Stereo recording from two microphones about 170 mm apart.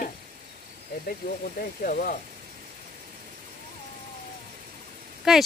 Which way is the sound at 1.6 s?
55° left (ahead or behind).